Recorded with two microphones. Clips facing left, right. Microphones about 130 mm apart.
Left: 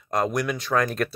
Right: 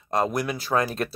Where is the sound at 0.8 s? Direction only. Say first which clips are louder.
Left 2 dB; 30° right (ahead or behind).